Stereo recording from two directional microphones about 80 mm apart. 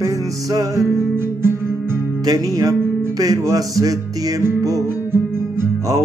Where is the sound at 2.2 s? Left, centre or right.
Right.